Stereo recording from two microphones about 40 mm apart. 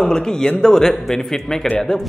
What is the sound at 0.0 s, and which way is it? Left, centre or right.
Speech, centre.